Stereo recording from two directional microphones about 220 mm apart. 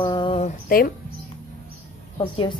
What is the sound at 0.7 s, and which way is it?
Speech, 40° left (ahead or behind).